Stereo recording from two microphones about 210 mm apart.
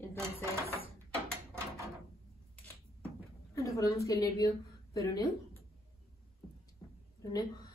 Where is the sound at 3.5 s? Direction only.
15° left (ahead or behind).